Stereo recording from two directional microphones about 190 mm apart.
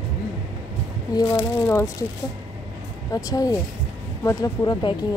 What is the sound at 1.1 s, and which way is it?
Speech, 20° left (ahead or behind).